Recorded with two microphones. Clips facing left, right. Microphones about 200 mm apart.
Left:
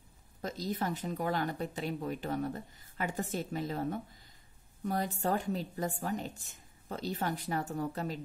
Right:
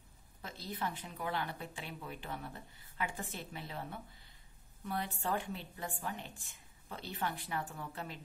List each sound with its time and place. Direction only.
0.4 s speech: 40° left (ahead or behind)